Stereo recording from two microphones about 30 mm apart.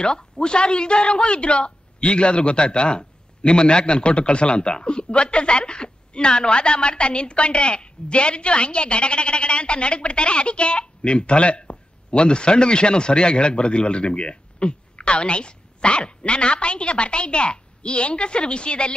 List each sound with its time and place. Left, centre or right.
0.0 s a woman's voice: left